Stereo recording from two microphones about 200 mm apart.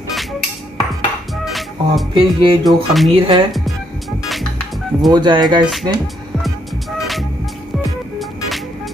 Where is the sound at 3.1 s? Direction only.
25° right (ahead or behind).